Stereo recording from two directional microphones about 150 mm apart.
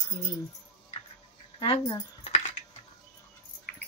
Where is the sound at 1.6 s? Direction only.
30° left (ahead or behind).